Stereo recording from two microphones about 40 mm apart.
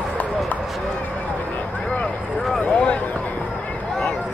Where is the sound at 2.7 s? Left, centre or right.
Left.